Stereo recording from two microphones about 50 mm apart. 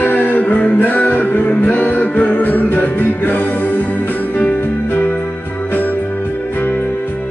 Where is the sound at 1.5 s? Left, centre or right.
Left.